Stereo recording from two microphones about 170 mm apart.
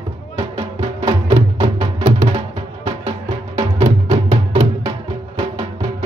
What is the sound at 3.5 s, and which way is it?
Music, 40° right (ahead or behind).